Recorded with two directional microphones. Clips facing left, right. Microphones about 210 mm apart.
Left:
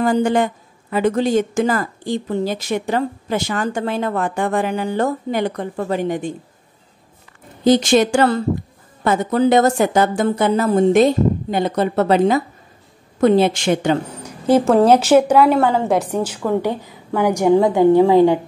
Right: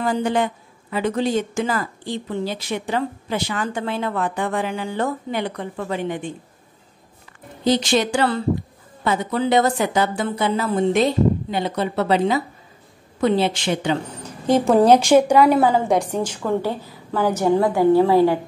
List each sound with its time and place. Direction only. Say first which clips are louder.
0.0 s a woman's voice: left 4 dB; 45° left (ahead or behind)
7.6 s a woman's voice: left 5 dB; 45° left (ahead or behind)
14.0 s a sound: left 3 dB; 10° left (ahead or behind)
14.7 s a woman's voice: even; centre (ahead or behind); by 18.4 s 20° left (ahead or behind)